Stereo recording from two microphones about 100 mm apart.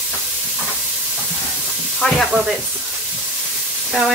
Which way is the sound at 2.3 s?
10° right (ahead or behind).